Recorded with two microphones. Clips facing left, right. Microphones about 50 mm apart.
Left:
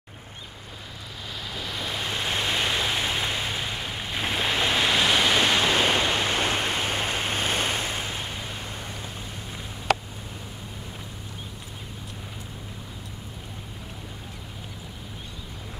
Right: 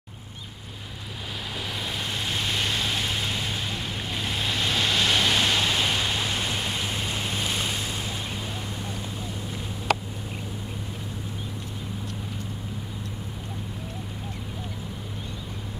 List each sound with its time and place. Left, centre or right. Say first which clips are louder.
1.5 s vehicle: even; centre
2.0 s vehicle: left 3 dB; left
5.4 s a sound: left 2 dB; left